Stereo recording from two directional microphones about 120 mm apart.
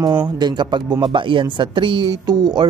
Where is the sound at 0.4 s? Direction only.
40° right (ahead or behind).